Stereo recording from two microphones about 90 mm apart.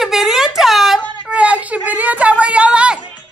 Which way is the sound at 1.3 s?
15° right (ahead or behind).